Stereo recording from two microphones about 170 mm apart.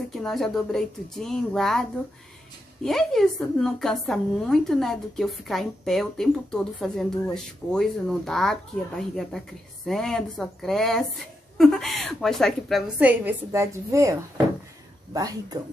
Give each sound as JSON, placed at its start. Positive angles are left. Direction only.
{"t": 0.1, "sound": "a woman's voice", "side_deg": 0}